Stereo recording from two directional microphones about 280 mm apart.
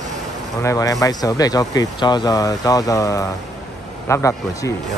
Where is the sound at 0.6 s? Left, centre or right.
Centre.